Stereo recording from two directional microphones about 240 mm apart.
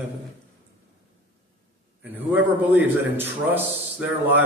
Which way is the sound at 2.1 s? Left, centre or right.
Centre.